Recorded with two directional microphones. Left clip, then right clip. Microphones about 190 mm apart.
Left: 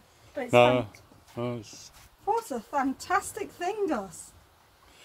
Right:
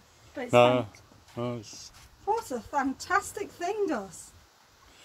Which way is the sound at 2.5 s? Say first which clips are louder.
Left 1 dB; 65° left (ahead or behind).